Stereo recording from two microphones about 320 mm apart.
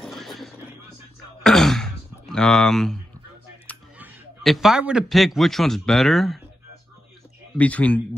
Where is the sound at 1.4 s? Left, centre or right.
Centre.